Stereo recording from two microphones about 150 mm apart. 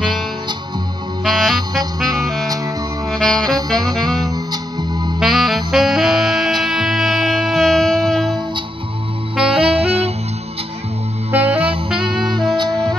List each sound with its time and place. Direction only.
1.2 s music: centre (ahead or behind)
3.1 s saxophone: 5° left (ahead or behind)
4.2 s music: 25° right (ahead or behind)
5.2 s saxophone: centre (ahead or behind)
5.7 s music: centre (ahead or behind)
9.3 s saxophone: 5° right (ahead or behind)
9.6 s saxophone: 40° right (ahead or behind)
11.3 s saxophone: 10° right (ahead or behind)
12.0 s music: 30° right (ahead or behind)